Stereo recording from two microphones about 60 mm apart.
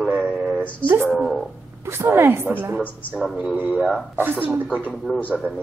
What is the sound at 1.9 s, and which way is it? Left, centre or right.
Speech, right.